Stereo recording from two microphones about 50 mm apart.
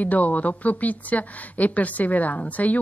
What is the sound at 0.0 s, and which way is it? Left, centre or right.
Speech, left.